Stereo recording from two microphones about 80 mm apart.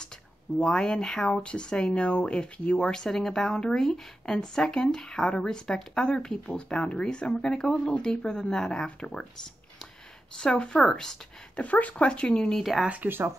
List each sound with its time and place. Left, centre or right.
0.6 s speech: centre
10.4 s speech: centre
12.8 s speech: centre